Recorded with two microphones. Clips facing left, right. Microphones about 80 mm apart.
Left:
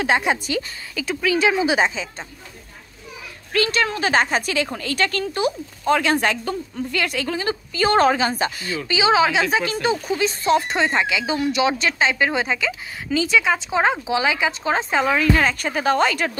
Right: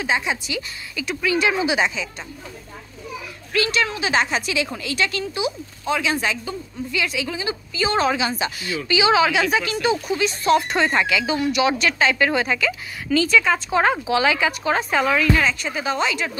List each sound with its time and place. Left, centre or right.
0.0 s speech: left
0.9 s speech: left
3.5 s speech: left